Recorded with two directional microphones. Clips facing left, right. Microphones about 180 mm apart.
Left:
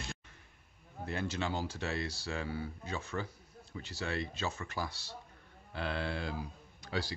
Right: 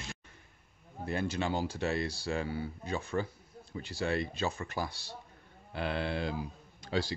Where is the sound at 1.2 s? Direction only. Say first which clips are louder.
Right 3 dB; 15° right (ahead or behind).